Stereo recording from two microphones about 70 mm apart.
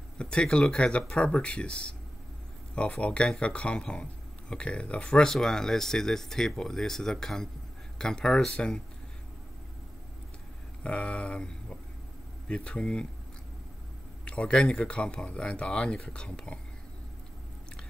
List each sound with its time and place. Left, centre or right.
0.2 s speech: centre
10.8 s speech: centre
14.2 s speech: centre